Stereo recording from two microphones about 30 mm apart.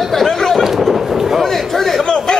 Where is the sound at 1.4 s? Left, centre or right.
Centre.